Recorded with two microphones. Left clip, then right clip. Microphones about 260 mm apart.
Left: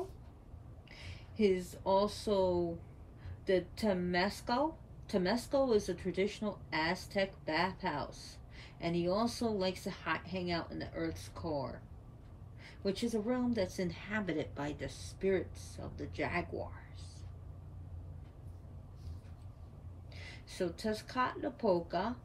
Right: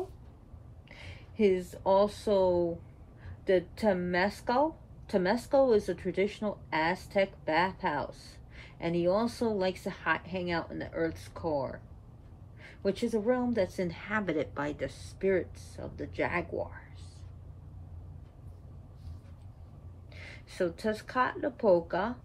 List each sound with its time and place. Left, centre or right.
1.3 s a woman's voice: centre
16.5 s speech: centre
20.5 s speech: centre